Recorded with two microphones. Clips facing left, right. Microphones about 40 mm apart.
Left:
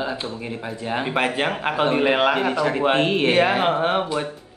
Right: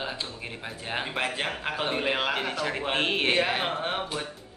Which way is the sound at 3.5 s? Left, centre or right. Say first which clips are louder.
Left 9 dB; left.